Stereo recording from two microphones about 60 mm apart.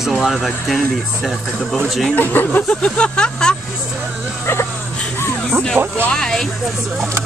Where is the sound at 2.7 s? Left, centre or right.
Centre.